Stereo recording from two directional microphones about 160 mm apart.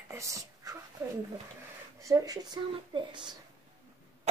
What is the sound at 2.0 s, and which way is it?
A woman's voice, 20° right (ahead or behind).